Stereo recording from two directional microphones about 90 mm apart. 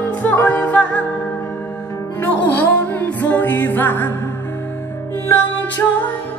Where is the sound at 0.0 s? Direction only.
20° left (ahead or behind).